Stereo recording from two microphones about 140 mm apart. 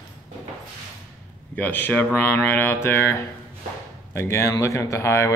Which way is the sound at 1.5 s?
10° left (ahead or behind).